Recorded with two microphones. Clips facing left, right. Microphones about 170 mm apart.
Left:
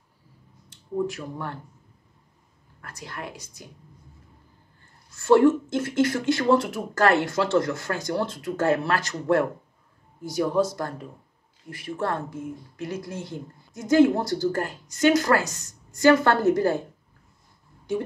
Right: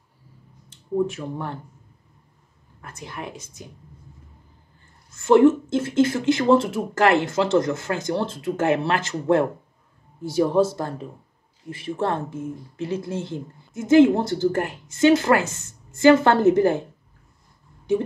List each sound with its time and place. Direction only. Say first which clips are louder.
0.9 s speech: right 4 dB; 25° right (ahead or behind)
2.8 s speech: right 2 dB; 20° right (ahead or behind)
5.1 s speech: right 2 dB; 20° right (ahead or behind)